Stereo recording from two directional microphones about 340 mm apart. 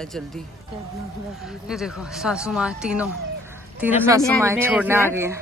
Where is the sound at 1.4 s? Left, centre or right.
Centre.